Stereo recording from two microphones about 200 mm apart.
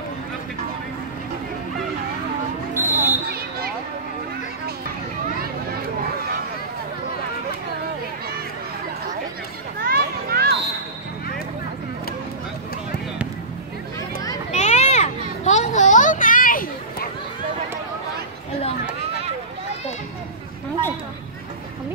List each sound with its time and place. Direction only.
2.7 s basketball bounce: 10° right (ahead or behind)
3.3 s a sound: 50° right (ahead or behind)
9.8 s children playing: 50° right (ahead or behind)
14.5 s children playing: 35° left (ahead or behind)